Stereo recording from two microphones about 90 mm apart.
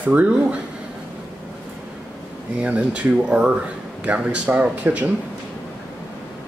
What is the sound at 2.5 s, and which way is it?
Speech, 15° right (ahead or behind).